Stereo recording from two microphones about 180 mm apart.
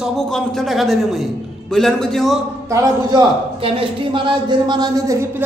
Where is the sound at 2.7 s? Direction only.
20° right (ahead or behind).